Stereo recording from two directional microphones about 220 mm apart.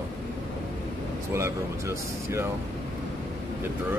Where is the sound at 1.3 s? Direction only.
10° right (ahead or behind).